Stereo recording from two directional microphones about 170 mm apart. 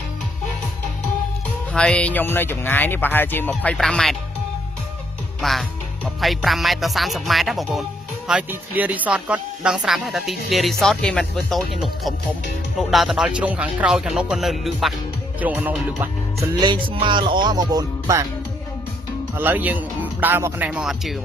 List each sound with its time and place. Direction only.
1.7 s speech: 5° left (ahead or behind)
5.4 s speech: centre (ahead or behind)
16.5 s music: 25° right (ahead or behind)
19.3 s speech: 10° right (ahead or behind)